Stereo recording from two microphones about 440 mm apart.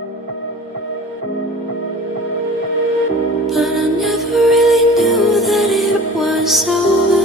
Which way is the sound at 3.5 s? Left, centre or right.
Centre.